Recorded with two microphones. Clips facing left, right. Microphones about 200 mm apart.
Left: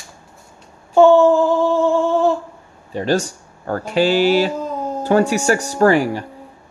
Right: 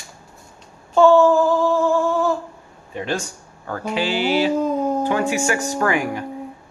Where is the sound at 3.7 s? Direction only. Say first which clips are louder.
Left 6 dB; 45° left (ahead or behind).